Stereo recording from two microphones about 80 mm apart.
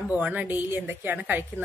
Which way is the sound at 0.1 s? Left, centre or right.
Centre.